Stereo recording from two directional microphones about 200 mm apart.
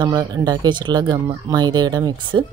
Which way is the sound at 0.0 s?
20° right (ahead or behind).